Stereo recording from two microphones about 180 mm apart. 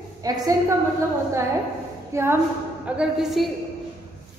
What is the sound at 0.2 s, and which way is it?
Speech, 20° right (ahead or behind).